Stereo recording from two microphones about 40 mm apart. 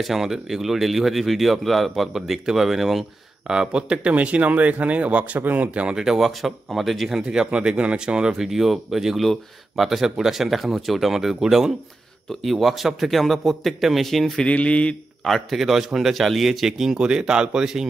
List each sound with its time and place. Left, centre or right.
0.0 s speech: centre
3.4 s speech: right
4.1 s speech: right
5.7 s speech: right
5.9 s a man's voice: centre
7.2 s speech: centre
8.3 s a man's voice: centre
12.3 s speech: centre
14.4 s mantra: left
15.5 s a man's voice: centre